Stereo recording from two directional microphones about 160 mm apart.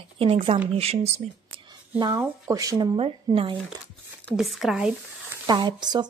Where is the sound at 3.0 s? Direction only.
35° right (ahead or behind).